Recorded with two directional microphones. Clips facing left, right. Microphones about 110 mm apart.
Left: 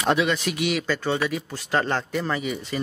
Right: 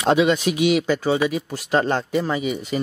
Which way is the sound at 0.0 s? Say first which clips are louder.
Right 5 dB; 15° right (ahead or behind).